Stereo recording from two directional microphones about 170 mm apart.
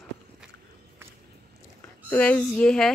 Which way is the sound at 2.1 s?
10° left (ahead or behind).